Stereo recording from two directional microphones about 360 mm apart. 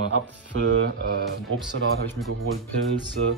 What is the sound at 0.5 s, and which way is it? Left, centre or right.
Speech, right.